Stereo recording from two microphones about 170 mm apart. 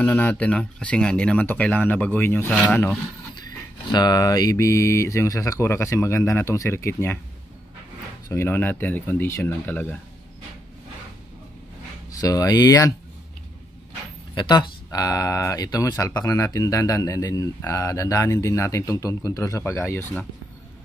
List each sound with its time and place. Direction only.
0.0 s mantra: 10° left (ahead or behind)
2.6 s speech: 5° left (ahead or behind)
3.4 s mantra: 25° left (ahead or behind)
8.3 s mantra: 15° left (ahead or behind)
12.1 s speech: 20° left (ahead or behind)
14.3 s speech: 25° left (ahead or behind)